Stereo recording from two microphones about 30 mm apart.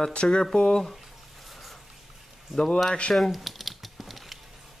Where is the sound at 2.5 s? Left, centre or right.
Left.